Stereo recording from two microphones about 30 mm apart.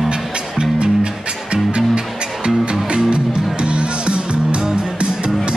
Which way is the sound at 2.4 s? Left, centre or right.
Right.